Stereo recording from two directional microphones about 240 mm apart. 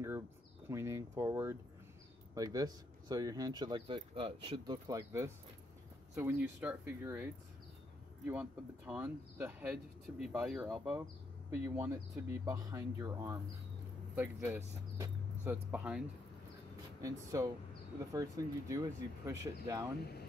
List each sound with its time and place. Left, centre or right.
0.7 s speech: centre
8.3 s speech: centre
17.0 s speech: centre